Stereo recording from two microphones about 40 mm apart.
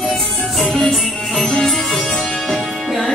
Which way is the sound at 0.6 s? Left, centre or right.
Centre.